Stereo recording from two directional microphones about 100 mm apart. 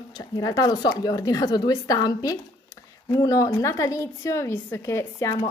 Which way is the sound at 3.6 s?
30° left (ahead or behind).